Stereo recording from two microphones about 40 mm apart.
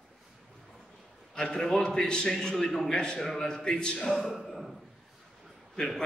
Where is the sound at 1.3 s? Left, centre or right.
Left.